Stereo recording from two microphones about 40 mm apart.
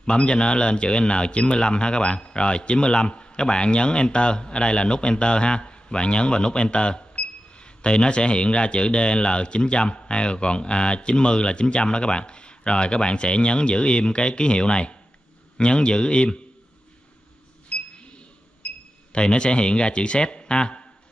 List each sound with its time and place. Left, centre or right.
0.0 s speech: left
17.6 s a sound: left
19.1 s speech: left